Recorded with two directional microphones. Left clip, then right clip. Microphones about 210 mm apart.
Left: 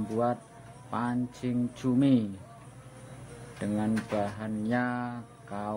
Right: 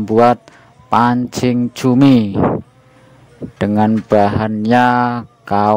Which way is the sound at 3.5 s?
50° right (ahead or behind).